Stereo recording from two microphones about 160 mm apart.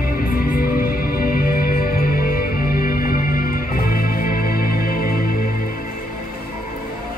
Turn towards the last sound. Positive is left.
turn(degrees=65)  # may be behind; listen again after turning